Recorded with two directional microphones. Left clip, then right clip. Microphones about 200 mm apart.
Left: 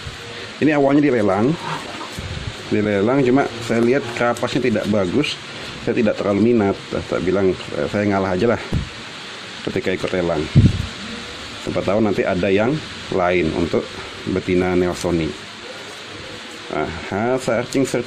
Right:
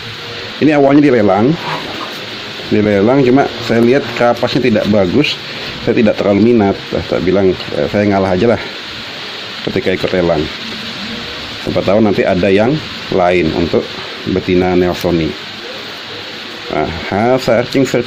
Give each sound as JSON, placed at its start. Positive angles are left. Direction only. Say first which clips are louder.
{"t": 0.6, "sound": "speech", "louder": "right 7 dB", "side_deg": 0}
{"t": 2.7, "sound": "speech", "louder": "right 7 dB", "side_deg": 0}
{"t": 9.8, "sound": "speech", "louder": "right 7 dB", "side_deg": 0}
{"t": 11.7, "sound": "speech", "louder": "right 7 dB", "side_deg": 0}
{"t": 16.7, "sound": "speech", "louder": "right 7 dB", "side_deg": -5}